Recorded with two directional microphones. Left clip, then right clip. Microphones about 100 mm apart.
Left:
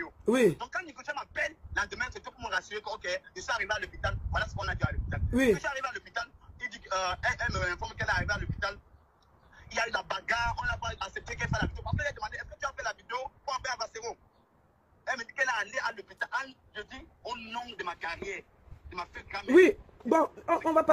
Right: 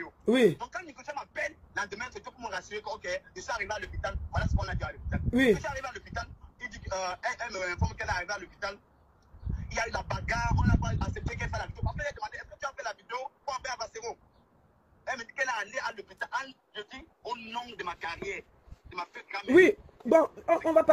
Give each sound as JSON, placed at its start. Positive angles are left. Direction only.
{"t": 0.2, "sound": "speech", "side_deg": 20}
{"t": 0.6, "sound": "a man's voice", "side_deg": -5}
{"t": 5.3, "sound": "speech", "side_deg": 20}
{"t": 5.6, "sound": "speech", "side_deg": 0}
{"t": 9.6, "sound": "a sound", "side_deg": -5}
{"t": 17.2, "sound": "a man's voice", "side_deg": 55}
{"t": 19.5, "sound": "speech", "side_deg": 20}